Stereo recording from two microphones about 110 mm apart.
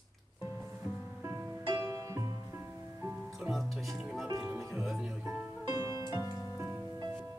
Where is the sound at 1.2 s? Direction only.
35° right (ahead or behind).